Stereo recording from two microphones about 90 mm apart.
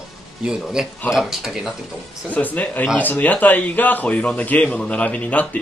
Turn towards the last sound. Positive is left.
turn(degrees=15)  # may be behind; listen again after turning